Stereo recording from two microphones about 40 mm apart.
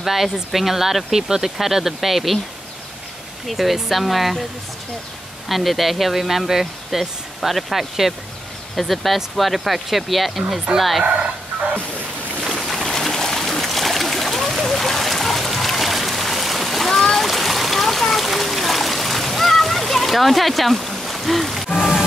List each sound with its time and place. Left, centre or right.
0.0 s speech: centre
3.4 s speech: centre
5.5 s speech: centre
11.1 s speech: right
12.4 s a sound: centre
16.9 s splash: centre
17.3 s splash: centre
21.7 s rain on surface: centre